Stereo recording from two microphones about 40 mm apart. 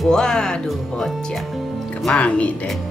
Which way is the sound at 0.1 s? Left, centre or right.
Centre.